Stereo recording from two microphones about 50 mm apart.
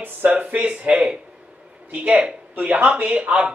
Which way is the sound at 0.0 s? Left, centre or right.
Right.